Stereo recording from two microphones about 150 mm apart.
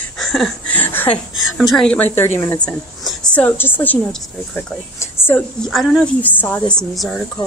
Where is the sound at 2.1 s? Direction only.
15° left (ahead or behind).